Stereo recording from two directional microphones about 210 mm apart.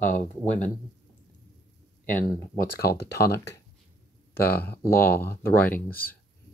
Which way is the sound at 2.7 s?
50° left (ahead or behind).